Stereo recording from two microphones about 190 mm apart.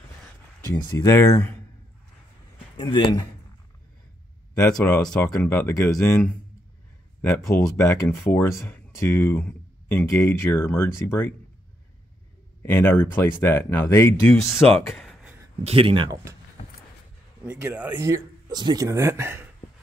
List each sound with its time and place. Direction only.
0.9 s speech: 15° left (ahead or behind)
2.8 s speech: 25° left (ahead or behind)
4.6 s speech: 10° left (ahead or behind)
12.6 s speech: 10° left (ahead or behind)
15.0 s a sound: centre (ahead or behind)
15.6 s speech: 30° right (ahead or behind)
17.5 s speech: 5° right (ahead or behind)